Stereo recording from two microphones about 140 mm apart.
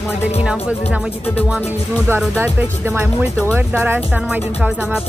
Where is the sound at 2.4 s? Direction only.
15° right (ahead or behind).